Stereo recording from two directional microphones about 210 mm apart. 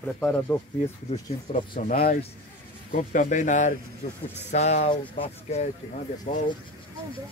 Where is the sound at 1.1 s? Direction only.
30° left (ahead or behind).